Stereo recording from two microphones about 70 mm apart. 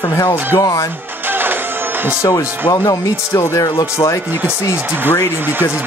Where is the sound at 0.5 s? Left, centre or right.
Left.